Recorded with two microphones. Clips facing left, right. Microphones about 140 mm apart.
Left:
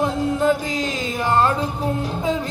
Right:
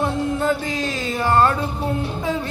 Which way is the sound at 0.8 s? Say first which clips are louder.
Even; 20° left (ahead or behind).